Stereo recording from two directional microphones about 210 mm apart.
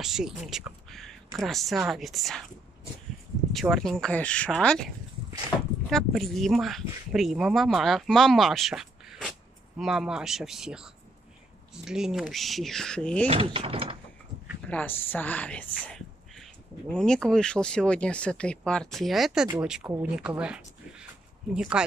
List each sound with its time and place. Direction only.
0.0 s speech: centre (ahead or behind)
3.5 s speech: centre (ahead or behind)
13.3 s speech: 25° right (ahead or behind)
14.7 s speech: 10° left (ahead or behind)